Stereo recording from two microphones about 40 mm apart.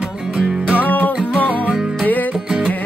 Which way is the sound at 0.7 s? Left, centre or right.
Left.